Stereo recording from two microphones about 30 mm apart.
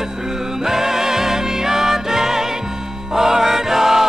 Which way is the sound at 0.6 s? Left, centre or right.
Centre.